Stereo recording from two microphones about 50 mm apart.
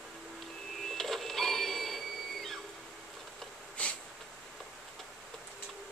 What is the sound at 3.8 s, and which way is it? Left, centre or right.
Snort, left.